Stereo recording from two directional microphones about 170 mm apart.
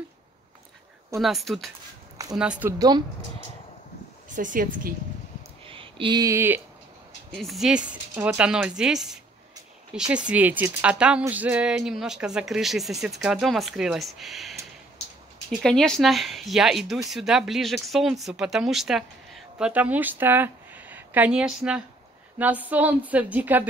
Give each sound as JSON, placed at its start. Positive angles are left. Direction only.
{"t": 1.2, "sound": "speech", "side_deg": 0}
{"t": 4.4, "sound": "speech", "side_deg": -50}
{"t": 5.7, "sound": "speech", "side_deg": -30}
{"t": 7.2, "sound": "speech", "side_deg": 0}
{"t": 15.6, "sound": "speech", "side_deg": 5}